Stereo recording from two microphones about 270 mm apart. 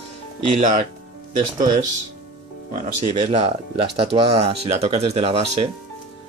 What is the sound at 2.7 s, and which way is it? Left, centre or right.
Speech, right.